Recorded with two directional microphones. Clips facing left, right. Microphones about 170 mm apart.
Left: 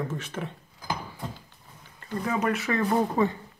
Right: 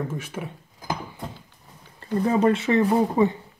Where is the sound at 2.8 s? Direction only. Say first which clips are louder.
Right 4 dB; 15° right (ahead or behind).